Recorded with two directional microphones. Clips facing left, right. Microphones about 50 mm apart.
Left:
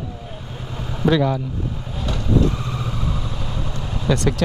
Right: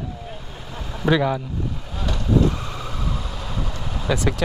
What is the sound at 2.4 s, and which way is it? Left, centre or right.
Vehicle, centre.